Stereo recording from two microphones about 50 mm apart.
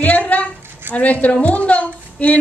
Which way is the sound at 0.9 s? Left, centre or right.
Right.